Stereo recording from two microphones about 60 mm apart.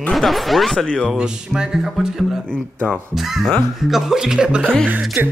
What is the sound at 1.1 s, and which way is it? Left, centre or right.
Speech, centre.